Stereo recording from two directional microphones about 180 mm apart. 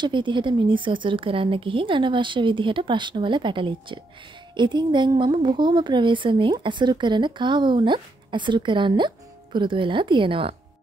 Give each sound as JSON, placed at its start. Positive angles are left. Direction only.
{"t": 0.0, "sound": "a woman's voice", "side_deg": -25}